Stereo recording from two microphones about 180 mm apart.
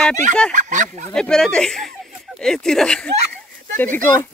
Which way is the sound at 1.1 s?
5° left (ahead or behind).